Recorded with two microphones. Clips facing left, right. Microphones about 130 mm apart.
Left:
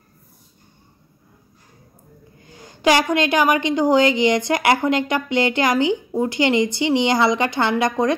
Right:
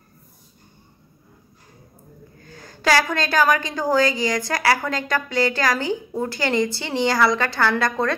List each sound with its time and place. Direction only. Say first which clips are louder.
2.4 s a woman's voice: left 4 dB; 20° left (ahead or behind)